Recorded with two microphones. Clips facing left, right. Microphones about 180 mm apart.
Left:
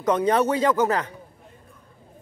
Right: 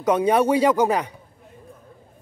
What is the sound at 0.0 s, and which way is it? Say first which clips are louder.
Speech: right 2 dB; 10° right (ahead or behind).